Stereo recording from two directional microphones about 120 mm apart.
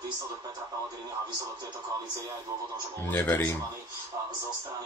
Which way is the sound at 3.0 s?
15° left (ahead or behind).